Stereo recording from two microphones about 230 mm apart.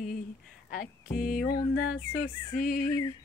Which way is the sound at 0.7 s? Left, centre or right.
Left.